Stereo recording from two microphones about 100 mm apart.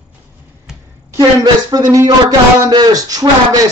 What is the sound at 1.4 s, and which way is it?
A man's voice, 40° right (ahead or behind).